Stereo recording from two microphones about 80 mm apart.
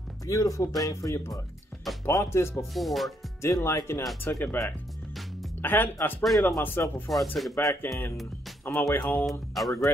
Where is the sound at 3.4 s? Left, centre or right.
Left.